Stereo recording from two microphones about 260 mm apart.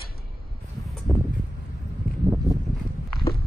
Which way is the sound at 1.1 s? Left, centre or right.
Centre.